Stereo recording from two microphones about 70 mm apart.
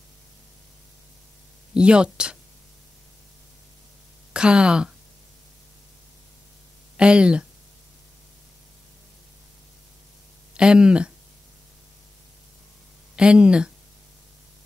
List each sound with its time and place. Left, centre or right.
1.7 s speech: centre
4.3 s speech: centre
7.0 s speech: centre
10.5 s speech: centre
13.1 s speech: centre